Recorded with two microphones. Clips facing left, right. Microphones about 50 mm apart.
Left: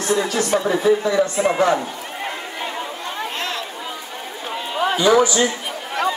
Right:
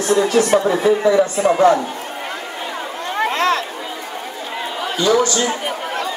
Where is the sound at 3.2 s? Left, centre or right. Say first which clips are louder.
Right 11 dB; right.